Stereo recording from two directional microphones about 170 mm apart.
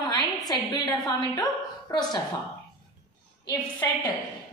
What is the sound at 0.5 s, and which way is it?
A woman's voice, 25° left (ahead or behind).